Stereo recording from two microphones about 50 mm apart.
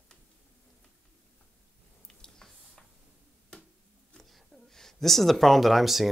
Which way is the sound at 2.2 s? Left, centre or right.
Centre.